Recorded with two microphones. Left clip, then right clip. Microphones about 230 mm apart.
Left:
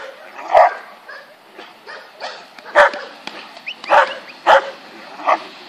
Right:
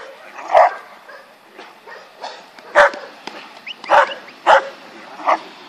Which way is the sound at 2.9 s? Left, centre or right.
Left.